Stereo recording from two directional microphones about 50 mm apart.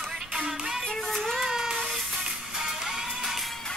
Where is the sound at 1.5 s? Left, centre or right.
Centre.